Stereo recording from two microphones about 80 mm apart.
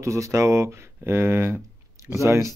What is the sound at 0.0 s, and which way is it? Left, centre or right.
Speech, right.